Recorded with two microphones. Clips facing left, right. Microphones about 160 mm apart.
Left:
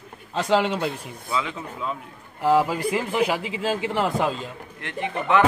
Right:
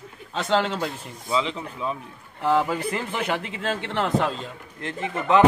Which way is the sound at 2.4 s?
5° left (ahead or behind).